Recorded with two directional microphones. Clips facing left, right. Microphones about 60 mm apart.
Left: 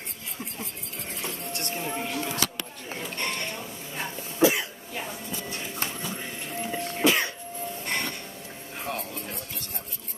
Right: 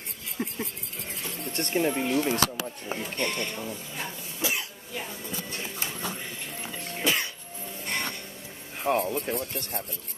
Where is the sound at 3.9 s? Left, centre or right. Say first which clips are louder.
Left 8 dB; left.